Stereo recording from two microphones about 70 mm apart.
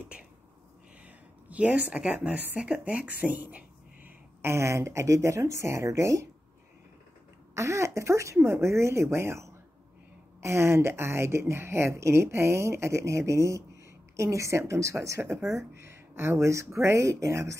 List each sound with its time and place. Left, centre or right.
1.0 s a sound: right
2.6 s speech: centre
4.4 s speech: right
7.5 s a woman's voice: right